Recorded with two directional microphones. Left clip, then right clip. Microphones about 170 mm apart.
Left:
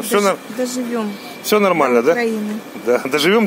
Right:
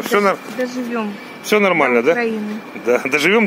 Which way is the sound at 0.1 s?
10° left (ahead or behind).